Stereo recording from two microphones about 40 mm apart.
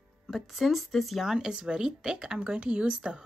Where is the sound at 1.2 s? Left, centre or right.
Centre.